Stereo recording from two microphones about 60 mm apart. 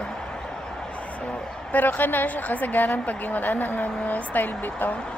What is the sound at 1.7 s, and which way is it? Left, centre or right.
A woman's voice, left.